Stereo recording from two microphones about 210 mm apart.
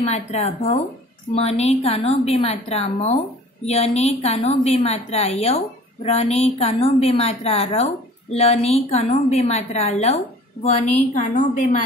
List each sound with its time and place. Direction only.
0.0 s a woman's voice: 30° left (ahead or behind)